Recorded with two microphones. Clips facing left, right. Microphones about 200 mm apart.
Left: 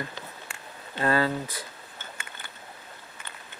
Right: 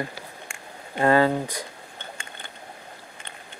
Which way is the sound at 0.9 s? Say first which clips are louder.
Right 6 dB; 25° right (ahead or behind).